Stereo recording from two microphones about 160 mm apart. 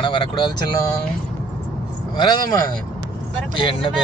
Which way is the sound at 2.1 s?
25° left (ahead or behind).